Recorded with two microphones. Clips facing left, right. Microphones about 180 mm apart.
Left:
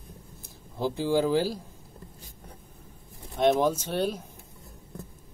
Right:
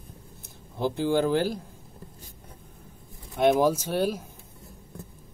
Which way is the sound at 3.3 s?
5° right (ahead or behind).